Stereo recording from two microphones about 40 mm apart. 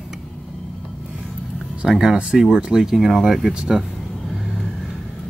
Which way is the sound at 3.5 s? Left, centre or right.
Right.